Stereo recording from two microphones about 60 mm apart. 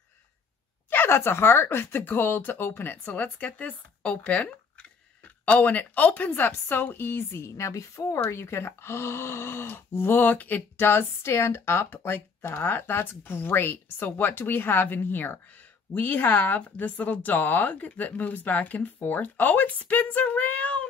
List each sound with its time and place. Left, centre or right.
0.8 s speech: left
8.3 s speech: left